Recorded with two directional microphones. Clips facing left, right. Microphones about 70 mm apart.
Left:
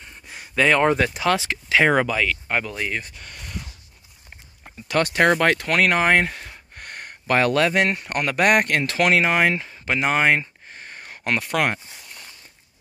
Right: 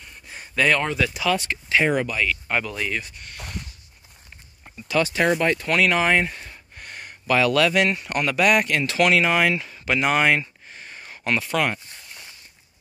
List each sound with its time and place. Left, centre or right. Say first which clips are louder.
0.0 s a sound: left 1 dB; centre
0.9 s speech: left 2 dB; left
1.3 s speech: left 1 dB; left
2.4 s speech: even; left
4.8 s speech: left 2 dB; left
5.8 s speech: left 1 dB; left